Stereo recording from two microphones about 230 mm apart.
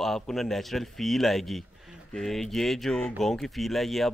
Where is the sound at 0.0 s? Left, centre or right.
Centre.